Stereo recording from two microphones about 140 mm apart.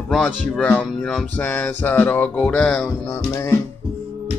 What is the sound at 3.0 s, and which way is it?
Music, 20° left (ahead or behind).